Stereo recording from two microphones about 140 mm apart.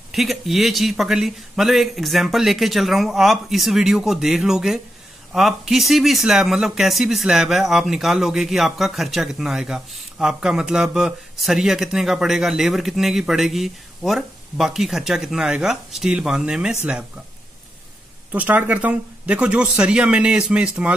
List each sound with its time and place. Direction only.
0.1 s speech: centre (ahead or behind)
18.3 s speech: 10° right (ahead or behind)